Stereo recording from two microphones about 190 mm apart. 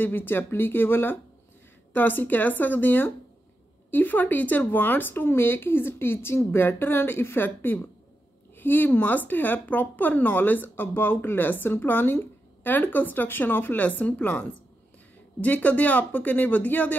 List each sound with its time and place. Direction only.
0.0 s speech: 10° left (ahead or behind)